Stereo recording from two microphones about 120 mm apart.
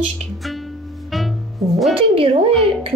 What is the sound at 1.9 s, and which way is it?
Speech, 50° right (ahead or behind).